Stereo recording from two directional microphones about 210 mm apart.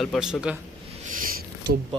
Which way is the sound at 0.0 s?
Centre (ahead or behind).